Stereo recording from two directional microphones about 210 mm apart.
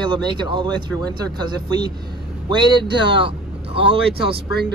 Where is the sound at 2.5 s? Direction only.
20° right (ahead or behind).